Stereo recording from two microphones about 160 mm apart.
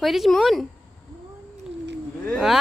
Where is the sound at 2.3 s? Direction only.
Centre (ahead or behind).